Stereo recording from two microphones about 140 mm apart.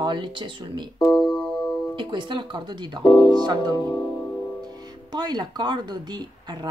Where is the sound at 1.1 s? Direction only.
10° left (ahead or behind).